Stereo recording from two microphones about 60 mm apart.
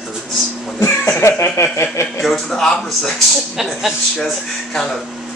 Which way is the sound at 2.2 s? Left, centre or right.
Centre.